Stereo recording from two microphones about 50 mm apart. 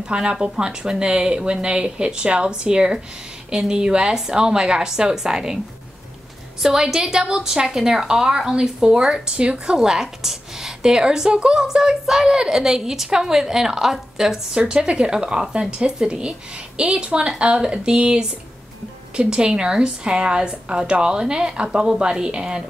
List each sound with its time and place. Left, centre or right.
0.0 s a woman's voice: centre
6.6 s a woman's voice: centre
9.8 s a woman's voice: centre